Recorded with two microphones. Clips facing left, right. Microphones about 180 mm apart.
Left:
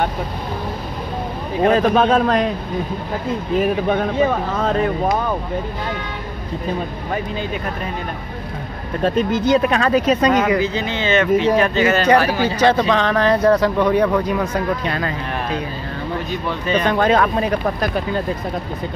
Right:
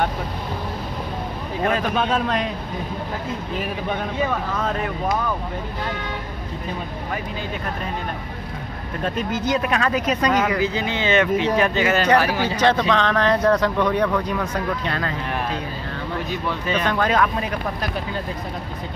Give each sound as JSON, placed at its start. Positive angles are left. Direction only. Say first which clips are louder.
{"t": 1.7, "sound": "a man's voice", "louder": "left 7 dB", "side_deg": 40}
{"t": 3.5, "sound": "a man's voice", "louder": "left 10 dB", "side_deg": 50}
{"t": 4.2, "sound": "speech", "louder": "left 5 dB", "side_deg": 30}
{"t": 9.0, "sound": "speech", "louder": "left 7 dB", "side_deg": 30}
{"t": 10.6, "sound": "speech", "louder": "left 2 dB", "side_deg": -10}
{"t": 12.4, "sound": "speech", "louder": "left 3 dB", "side_deg": 10}
{"t": 16.3, "sound": "speech", "louder": "left 3 dB", "side_deg": -5}
{"t": 16.8, "sound": "speech", "louder": "left 4 dB", "side_deg": 25}
{"t": 17.6, "sound": "a man's voice", "louder": "left 6 dB", "side_deg": 50}